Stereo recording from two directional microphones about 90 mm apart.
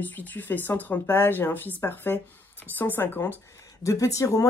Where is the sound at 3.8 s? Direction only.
35° left (ahead or behind).